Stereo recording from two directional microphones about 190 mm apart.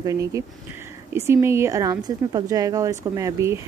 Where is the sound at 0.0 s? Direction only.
15° right (ahead or behind).